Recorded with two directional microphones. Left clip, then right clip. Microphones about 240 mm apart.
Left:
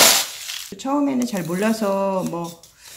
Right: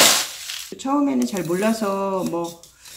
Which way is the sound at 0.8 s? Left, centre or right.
Left.